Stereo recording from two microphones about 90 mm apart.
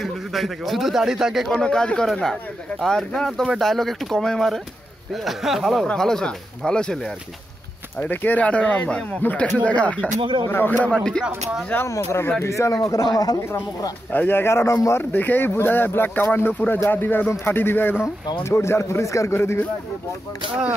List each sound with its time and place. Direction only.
0.0 s a man's voice: centre (ahead or behind)
1.6 s speech: 10° left (ahead or behind)
8.0 s speech: 20° left (ahead or behind)
10.2 s speech: 60° right (ahead or behind)
10.5 s speech: 25° left (ahead or behind)
11.9 s speech: 35° left (ahead or behind)
12.8 s speech: 45° left (ahead or behind)
14.1 s speech: 25° left (ahead or behind)
15.1 s speech: 20° left (ahead or behind)